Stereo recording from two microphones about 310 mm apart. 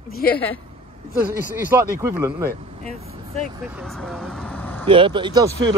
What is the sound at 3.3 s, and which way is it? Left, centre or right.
Speech, centre.